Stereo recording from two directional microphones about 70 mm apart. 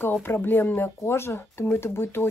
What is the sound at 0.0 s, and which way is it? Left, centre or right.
Speech, left.